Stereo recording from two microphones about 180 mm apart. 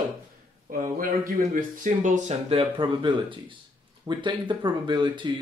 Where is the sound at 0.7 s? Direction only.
50° right (ahead or behind).